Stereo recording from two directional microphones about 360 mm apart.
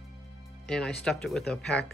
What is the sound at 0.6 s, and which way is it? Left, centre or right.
Speech, centre.